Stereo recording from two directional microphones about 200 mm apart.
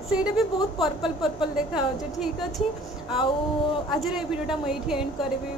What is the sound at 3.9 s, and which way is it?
A woman's voice, centre (ahead or behind).